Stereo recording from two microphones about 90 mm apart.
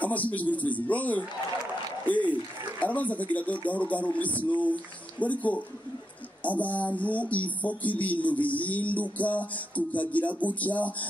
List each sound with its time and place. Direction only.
0.0 s speech: 15° left (ahead or behind)